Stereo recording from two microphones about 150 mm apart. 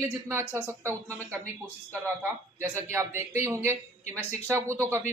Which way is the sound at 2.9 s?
20° right (ahead or behind).